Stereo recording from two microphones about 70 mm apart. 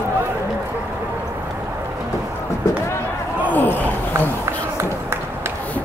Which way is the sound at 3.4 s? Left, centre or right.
Left.